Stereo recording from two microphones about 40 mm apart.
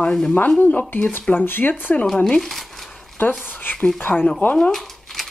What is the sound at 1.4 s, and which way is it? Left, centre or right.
Speech, left.